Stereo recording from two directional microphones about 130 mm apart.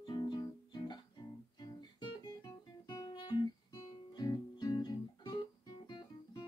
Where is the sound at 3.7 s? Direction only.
25° left (ahead or behind).